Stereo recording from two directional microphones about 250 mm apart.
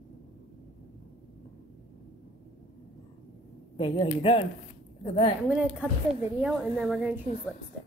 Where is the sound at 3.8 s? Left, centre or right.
Left.